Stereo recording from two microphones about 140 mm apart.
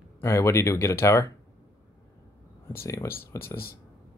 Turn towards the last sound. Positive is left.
turn(degrees=15)  # may be behind; listen again after turning